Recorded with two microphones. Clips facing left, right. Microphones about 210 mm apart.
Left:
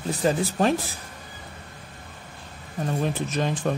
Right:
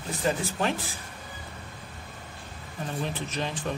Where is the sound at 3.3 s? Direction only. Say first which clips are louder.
Left 7 dB; 45° left (ahead or behind).